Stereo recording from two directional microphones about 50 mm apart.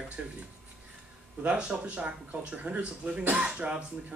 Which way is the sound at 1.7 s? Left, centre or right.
Right.